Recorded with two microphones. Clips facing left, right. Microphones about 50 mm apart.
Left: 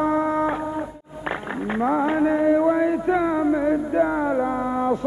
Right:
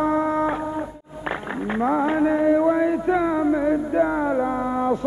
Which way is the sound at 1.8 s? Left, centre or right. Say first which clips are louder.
Even; centre.